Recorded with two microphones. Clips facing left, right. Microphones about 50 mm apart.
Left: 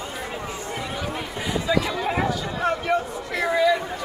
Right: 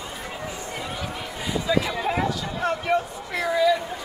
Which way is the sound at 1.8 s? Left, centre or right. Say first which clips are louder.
Even; centre.